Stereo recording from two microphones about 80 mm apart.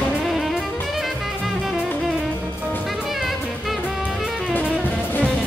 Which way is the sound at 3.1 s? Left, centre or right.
Centre.